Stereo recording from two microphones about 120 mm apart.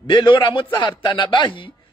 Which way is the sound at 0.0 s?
40° left (ahead or behind).